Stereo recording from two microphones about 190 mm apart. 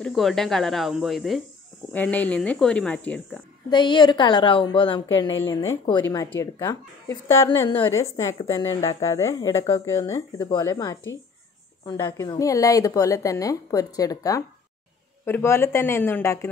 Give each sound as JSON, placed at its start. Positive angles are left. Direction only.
{"t": 0.0, "sound": "a woman's voice", "side_deg": 0}
{"t": 3.7, "sound": "a woman's voice", "side_deg": 25}